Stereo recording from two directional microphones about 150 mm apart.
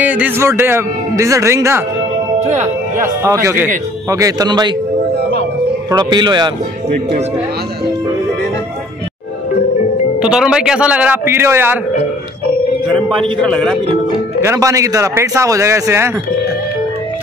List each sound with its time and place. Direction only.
0.0 s a man's voice: 10° right (ahead or behind)
2.4 s speech: 50° right (ahead or behind)
3.3 s a man's voice: 20° right (ahead or behind)
5.9 s a man's voice: 25° right (ahead or behind)
10.1 s a man's voice: 5° right (ahead or behind)
13.5 s speech: 10° left (ahead or behind)
14.4 s a man's voice: 20° right (ahead or behind)